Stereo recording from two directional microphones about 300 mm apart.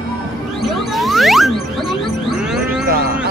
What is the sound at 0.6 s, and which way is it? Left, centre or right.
Music, centre.